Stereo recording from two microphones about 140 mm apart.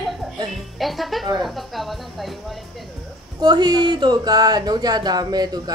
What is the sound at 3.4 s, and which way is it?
Speech, 30° right (ahead or behind).